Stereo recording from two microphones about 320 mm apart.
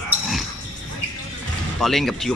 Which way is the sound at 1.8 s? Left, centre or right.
Centre.